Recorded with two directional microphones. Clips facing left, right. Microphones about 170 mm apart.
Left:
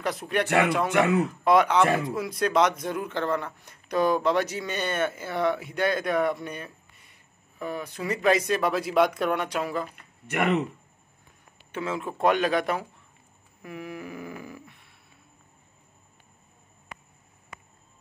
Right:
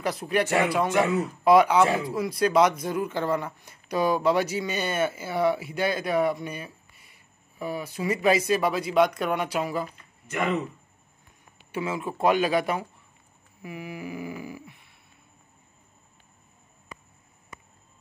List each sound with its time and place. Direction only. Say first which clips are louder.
0.0 s speech: right 2 dB; centre (ahead or behind)
9.9 s speech: left 2 dB; 70° left (ahead or behind)
11.7 s speech: right 1 dB; 5° right (ahead or behind)